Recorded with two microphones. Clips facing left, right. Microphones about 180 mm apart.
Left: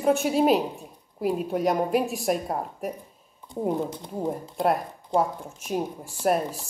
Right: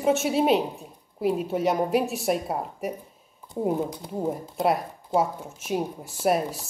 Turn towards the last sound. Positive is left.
turn(degrees=-5)  # may be behind; listen again after turning